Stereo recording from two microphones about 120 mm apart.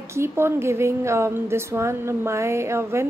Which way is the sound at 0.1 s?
20° right (ahead or behind).